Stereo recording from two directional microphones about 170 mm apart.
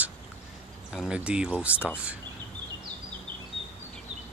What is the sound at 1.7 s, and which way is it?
Speech, 10° left (ahead or behind).